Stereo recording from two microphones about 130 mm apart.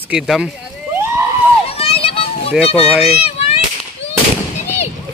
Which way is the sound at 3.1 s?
50° left (ahead or behind).